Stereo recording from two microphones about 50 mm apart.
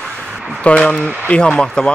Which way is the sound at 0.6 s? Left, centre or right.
Left.